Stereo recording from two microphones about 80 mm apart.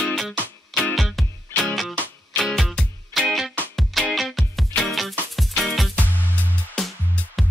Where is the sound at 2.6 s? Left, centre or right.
Centre.